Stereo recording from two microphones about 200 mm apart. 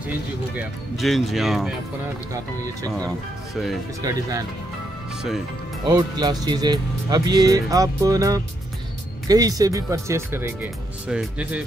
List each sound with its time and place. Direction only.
0.6 s speech: centre (ahead or behind)
4.0 s speech: 15° right (ahead or behind)
5.9 s speech: 20° right (ahead or behind); by 11.6 s 5° right (ahead or behind)